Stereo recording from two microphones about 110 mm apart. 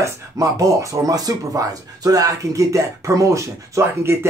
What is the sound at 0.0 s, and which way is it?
Speech, 30° right (ahead or behind).